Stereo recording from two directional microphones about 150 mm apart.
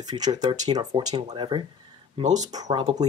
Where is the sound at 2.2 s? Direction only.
50° right (ahead or behind).